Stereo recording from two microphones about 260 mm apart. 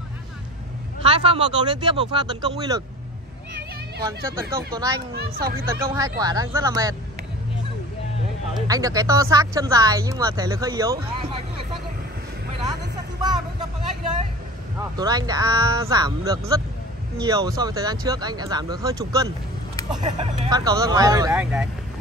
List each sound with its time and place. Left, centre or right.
1.0 s speech: right
4.0 s speech: centre
5.7 s speech: centre
8.5 s speech: centre
13.2 s vehicle: centre
15.0 s speech: centre